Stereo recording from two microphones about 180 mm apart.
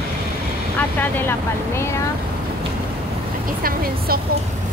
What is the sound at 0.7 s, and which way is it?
Speech, 10° left (ahead or behind).